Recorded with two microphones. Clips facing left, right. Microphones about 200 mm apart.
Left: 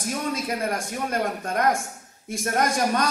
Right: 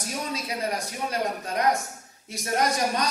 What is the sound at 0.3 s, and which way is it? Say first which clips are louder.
A woman's voice: left 2 dB; 50° left (ahead or behind).